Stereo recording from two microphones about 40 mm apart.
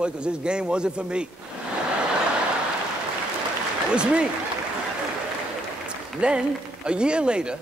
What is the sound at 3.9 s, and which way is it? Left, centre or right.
Speech, right.